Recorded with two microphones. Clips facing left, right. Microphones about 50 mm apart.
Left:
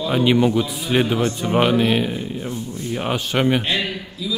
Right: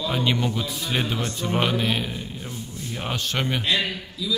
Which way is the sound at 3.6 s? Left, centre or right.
Left.